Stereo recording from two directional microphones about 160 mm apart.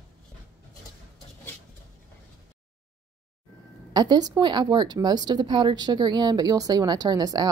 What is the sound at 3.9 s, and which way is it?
Speech, 25° right (ahead or behind).